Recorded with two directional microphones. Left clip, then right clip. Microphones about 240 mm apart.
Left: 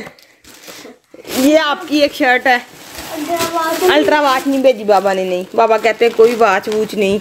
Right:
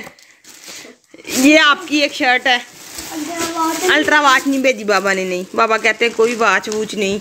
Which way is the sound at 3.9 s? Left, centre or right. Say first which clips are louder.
Even; centre.